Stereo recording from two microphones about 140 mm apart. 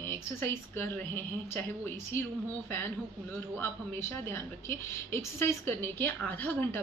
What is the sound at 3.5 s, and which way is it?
A woman's voice, 15° left (ahead or behind).